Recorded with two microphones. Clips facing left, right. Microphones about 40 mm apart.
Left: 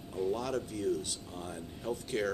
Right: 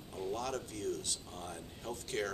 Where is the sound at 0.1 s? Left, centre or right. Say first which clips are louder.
Left 5 dB; centre.